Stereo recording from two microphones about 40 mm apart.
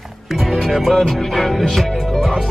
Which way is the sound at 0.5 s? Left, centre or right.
Centre.